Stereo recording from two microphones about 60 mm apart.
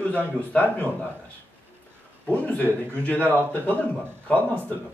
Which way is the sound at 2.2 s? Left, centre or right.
Left.